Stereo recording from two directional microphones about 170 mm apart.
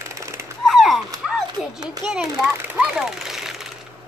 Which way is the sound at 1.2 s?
5° right (ahead or behind).